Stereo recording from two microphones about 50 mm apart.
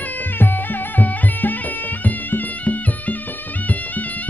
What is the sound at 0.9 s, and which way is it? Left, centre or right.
Music, left.